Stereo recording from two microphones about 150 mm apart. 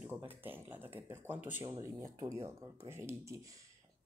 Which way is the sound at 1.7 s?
25° right (ahead or behind).